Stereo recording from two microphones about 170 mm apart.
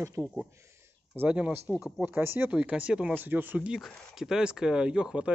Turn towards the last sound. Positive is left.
turn(degrees=-5)  # may be behind; listen again after turning